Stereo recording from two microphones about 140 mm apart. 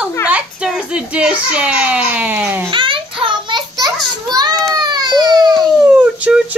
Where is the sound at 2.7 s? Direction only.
40° right (ahead or behind).